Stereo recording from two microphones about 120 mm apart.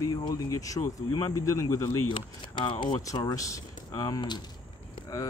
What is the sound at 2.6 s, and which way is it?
Speech, 40° left (ahead or behind).